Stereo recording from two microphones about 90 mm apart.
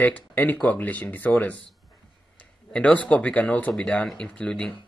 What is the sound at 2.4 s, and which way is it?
Speech, 15° left (ahead or behind).